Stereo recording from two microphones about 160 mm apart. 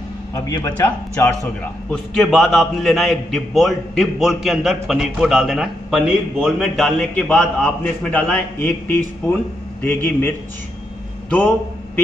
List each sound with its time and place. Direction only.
0.3 s a man's voice: 20° left (ahead or behind)
1.9 s a man's voice: 5° left (ahead or behind)